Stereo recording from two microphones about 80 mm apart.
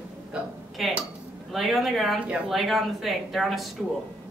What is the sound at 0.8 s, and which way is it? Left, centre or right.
A woman's voice, centre.